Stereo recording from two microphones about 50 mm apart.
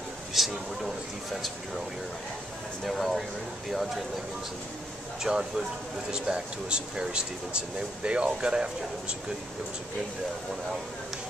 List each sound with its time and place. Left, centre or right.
0.3 s speech: centre
2.8 s speech: centre
5.2 s speech: centre